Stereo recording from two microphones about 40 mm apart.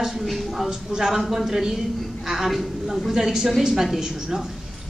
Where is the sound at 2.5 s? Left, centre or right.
Centre.